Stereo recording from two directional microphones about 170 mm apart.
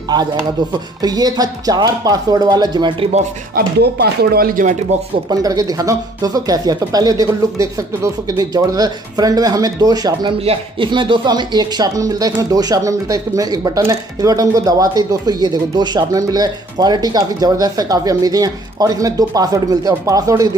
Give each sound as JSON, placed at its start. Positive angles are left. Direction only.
{"t": 0.1, "sound": "speech", "side_deg": -25}
{"t": 3.5, "sound": "speech", "side_deg": -70}
{"t": 5.3, "sound": "speech", "side_deg": -20}